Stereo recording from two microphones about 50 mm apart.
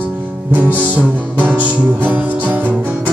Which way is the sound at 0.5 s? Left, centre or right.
Right.